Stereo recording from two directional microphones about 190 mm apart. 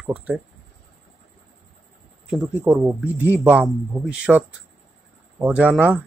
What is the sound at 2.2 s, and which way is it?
Speech, 5° right (ahead or behind).